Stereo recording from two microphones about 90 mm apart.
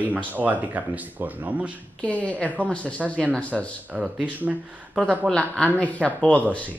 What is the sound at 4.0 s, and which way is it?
Speech, 15° right (ahead or behind).